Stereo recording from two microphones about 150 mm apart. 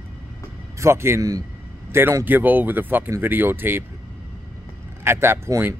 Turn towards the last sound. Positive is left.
turn(degrees=-15)  # may be behind; listen again after turning